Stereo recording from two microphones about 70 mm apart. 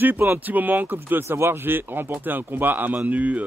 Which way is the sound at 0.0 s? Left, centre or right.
Right.